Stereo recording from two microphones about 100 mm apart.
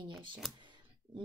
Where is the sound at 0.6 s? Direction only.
50° right (ahead or behind).